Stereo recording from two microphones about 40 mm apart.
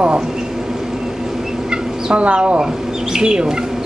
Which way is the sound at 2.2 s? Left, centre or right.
Right.